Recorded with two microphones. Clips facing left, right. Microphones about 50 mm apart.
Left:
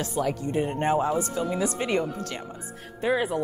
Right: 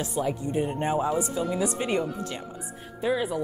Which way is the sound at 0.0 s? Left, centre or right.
Left.